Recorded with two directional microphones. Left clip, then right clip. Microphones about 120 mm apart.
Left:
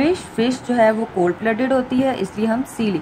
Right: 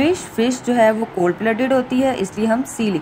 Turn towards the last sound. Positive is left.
turn(degrees=-25)  # may be behind; listen again after turning